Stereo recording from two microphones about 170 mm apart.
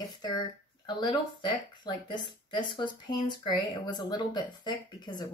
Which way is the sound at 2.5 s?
25° left (ahead or behind).